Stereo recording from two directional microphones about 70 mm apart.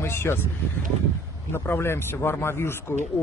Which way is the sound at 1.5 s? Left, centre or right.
Left.